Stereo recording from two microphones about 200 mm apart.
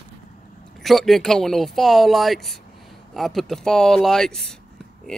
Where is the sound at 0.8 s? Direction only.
Centre (ahead or behind).